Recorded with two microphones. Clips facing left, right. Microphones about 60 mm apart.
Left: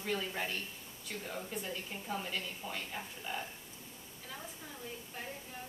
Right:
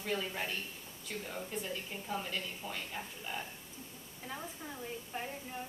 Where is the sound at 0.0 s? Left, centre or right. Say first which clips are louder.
Even; centre.